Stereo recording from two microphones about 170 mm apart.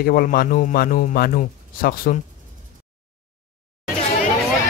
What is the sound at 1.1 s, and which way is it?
Speech, 60° left (ahead or behind).